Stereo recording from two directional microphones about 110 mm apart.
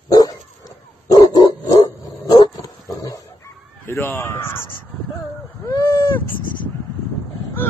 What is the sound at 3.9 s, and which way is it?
Speech, 20° left (ahead or behind).